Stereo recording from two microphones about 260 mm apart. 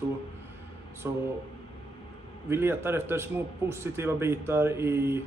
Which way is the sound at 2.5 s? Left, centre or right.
Centre.